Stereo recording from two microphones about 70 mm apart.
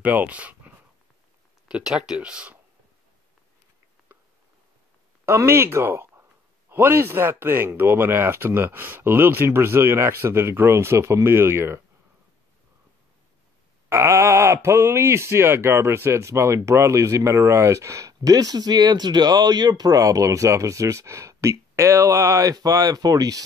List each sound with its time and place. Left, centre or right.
0.0 s speech: right
1.7 s speech: centre
5.2 s speech: right
13.8 s speech: right